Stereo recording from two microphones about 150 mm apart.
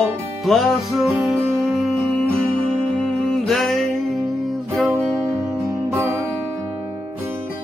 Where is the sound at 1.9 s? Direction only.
5° left (ahead or behind).